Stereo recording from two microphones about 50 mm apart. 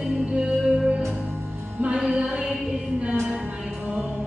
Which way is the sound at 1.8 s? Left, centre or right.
Centre.